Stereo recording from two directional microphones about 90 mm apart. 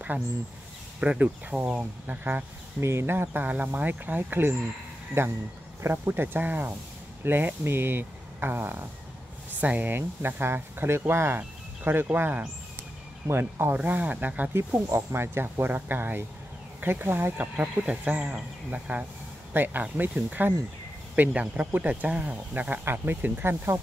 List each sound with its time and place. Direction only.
1.0 s speech: 10° right (ahead or behind)
2.8 s speech: 30° right (ahead or behind)
13.7 s speech: 15° right (ahead or behind)
14.9 s speech: 30° right (ahead or behind)